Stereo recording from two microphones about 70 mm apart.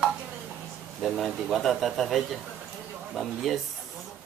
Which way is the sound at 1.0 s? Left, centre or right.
Centre.